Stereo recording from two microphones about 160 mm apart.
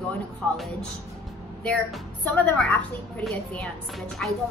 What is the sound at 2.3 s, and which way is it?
A woman's voice, 5° left (ahead or behind).